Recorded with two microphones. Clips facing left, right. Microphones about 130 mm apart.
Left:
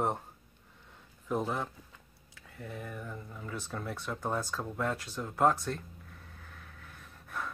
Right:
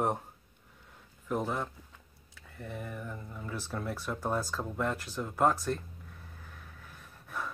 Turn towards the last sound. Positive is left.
turn(degrees=0)  # may be behind; listen again after turning